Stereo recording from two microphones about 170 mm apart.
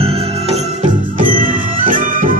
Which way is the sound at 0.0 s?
40° right (ahead or behind).